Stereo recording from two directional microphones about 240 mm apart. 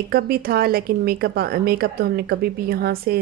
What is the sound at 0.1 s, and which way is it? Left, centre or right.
A woman's voice, right.